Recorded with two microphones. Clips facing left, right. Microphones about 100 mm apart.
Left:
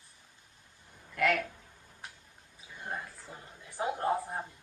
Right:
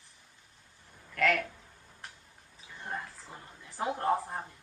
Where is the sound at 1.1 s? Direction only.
10° left (ahead or behind).